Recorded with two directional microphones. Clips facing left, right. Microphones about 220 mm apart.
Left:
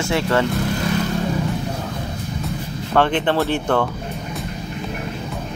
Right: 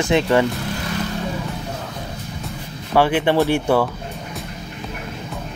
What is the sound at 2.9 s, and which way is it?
Speech, 10° right (ahead or behind).